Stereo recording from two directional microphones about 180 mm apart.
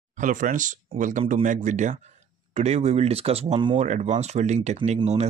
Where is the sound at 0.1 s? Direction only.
45° right (ahead or behind).